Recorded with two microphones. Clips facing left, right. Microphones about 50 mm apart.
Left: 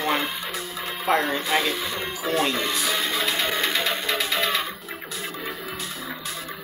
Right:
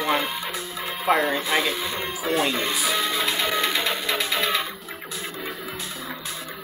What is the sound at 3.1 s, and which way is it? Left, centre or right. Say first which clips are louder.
Music: even; right.